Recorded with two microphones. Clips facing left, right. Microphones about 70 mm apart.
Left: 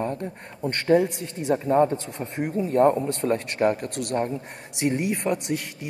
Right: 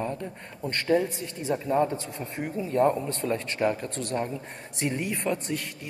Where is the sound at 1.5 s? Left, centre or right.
Left.